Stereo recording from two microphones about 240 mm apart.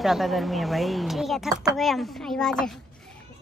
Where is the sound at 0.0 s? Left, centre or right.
Centre.